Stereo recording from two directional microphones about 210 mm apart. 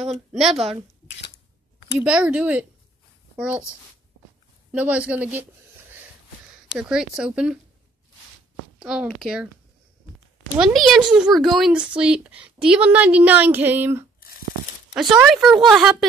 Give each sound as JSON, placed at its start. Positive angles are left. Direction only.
{"t": 0.0, "sound": "a woman's voice", "side_deg": -30}
{"t": 2.0, "sound": "speech", "side_deg": -5}
{"t": 4.7, "sound": "speech", "side_deg": -5}
{"t": 8.7, "sound": "speech", "side_deg": 0}
{"t": 10.6, "sound": "speech", "side_deg": 0}